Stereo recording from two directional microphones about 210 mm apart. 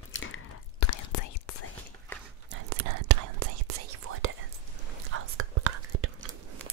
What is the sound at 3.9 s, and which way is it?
Whispering, 85° right.